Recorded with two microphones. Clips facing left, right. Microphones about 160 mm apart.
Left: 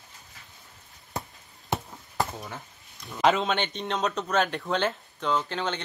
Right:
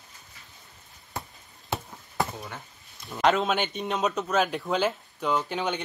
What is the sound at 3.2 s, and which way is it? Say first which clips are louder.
A man's voice: even; centre (ahead or behind).